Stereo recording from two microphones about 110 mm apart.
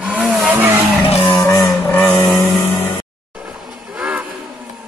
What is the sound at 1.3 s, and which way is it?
Vehicle, 20° left (ahead or behind).